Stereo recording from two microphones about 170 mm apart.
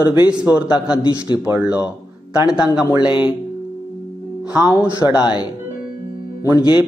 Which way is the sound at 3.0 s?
30° left (ahead or behind).